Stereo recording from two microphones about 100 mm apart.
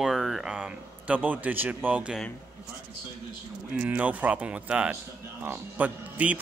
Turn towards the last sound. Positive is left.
turn(degrees=-15)  # may be behind; listen again after turning